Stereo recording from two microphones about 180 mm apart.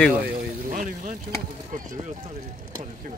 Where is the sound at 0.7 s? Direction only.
45° right (ahead or behind).